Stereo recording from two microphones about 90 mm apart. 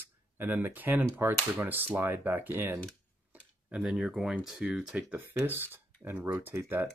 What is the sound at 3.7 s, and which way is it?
Speech, 10° right (ahead or behind).